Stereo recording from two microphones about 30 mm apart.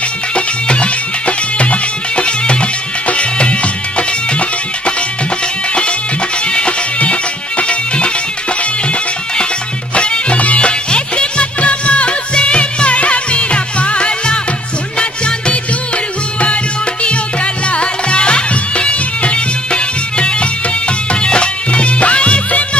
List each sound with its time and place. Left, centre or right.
0.3 s music: left
6.4 s music: left
9.9 s music: left
17.0 s music: left